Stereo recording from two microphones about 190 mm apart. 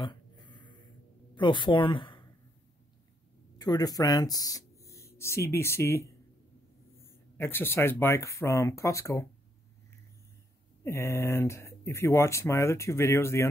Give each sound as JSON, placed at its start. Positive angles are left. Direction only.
{"t": 0.0, "sound": "a sound", "side_deg": 25}
{"t": 1.3, "sound": "speech", "side_deg": 25}
{"t": 3.5, "sound": "speech", "side_deg": 20}
{"t": 10.8, "sound": "speech", "side_deg": 15}